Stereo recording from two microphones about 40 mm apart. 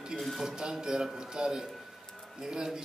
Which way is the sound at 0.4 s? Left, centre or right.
Centre.